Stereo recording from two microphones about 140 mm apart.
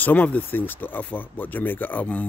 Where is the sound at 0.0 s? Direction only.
10° left (ahead or behind).